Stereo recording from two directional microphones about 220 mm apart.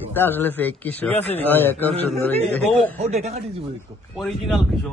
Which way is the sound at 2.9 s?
30° right (ahead or behind).